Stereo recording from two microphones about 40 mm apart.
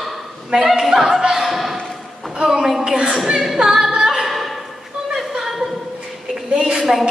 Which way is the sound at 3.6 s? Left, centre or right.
Centre.